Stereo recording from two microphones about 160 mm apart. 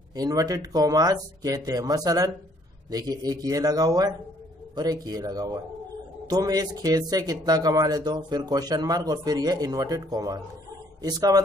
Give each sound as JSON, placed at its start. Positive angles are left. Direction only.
{"t": 0.1, "sound": "speech", "side_deg": -25}